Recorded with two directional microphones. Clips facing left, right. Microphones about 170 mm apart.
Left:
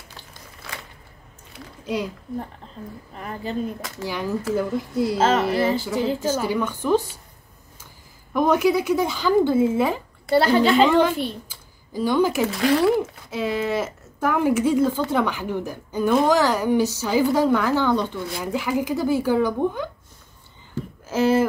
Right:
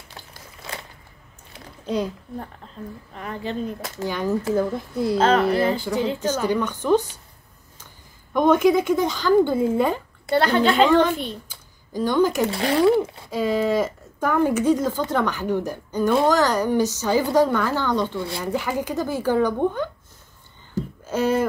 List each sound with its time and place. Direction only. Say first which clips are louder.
0.6 s a sound: right 2 dB; 20° right (ahead or behind)
3.2 s a woman's voice: even; 5° left (ahead or behind)
12.4 s speech: left 2 dB; 30° right (ahead or behind)
13.3 s a woman's voice: right 3 dB; 5° left (ahead or behind)
21.1 s speech: left 2 dB; 5° left (ahead or behind)